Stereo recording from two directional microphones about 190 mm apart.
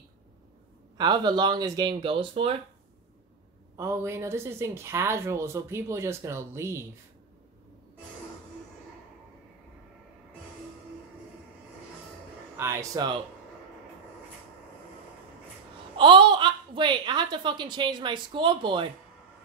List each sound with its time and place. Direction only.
0.9 s a woman's voice: 25° right (ahead or behind)
3.7 s a woman's voice: 15° right (ahead or behind)
12.5 s a woman's voice: 15° right (ahead or behind)
16.0 s a woman's voice: 25° right (ahead or behind)